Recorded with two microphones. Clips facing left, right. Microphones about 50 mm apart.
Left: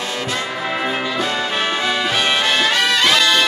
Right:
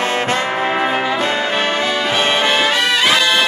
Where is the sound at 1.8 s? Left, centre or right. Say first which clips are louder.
Right 2 dB; centre.